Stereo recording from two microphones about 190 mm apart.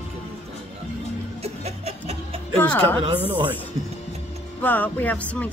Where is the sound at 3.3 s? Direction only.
25° right (ahead or behind).